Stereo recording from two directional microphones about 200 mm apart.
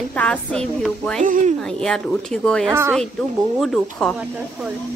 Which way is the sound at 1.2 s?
40° right (ahead or behind).